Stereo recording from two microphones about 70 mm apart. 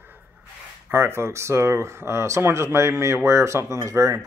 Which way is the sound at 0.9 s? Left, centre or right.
Right.